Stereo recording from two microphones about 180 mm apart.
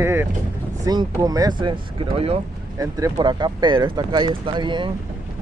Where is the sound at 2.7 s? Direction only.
20° right (ahead or behind).